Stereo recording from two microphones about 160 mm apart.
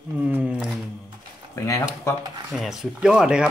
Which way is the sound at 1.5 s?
20° left (ahead or behind).